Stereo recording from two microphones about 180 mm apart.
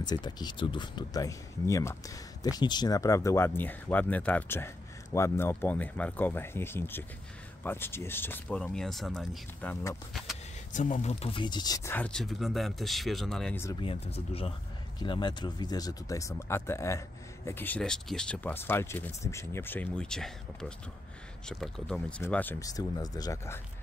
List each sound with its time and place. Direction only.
0.0 s speech: 25° left (ahead or behind)
10.7 s speech: 45° left (ahead or behind); by 13.6 s centre (ahead or behind)
14.1 s speech: 35° left (ahead or behind); by 23.6 s 15° left (ahead or behind)